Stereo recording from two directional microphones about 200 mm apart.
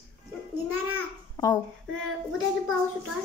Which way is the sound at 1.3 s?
15° left (ahead or behind).